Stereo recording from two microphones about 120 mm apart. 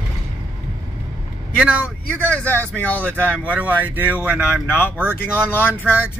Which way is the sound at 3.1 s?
15° right (ahead or behind).